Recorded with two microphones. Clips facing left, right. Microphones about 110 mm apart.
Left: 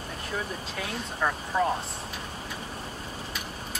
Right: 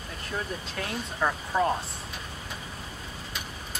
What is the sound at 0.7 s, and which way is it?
Speech, 5° right (ahead or behind).